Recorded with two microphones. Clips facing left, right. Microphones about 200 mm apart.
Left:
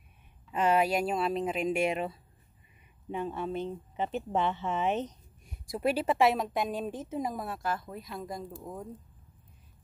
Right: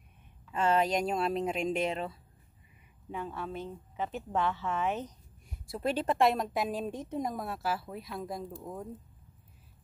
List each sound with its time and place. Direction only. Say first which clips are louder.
0.5 s a woman's voice: left 1 dB; 15° left (ahead or behind)
5.7 s a woman's voice: left 2 dB; 15° left (ahead or behind)